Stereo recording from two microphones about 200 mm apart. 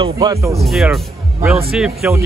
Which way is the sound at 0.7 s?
Centre (ahead or behind).